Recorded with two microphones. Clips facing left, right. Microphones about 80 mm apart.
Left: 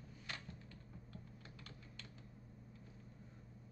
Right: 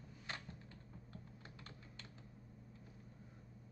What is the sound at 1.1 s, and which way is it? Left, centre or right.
Typing, right.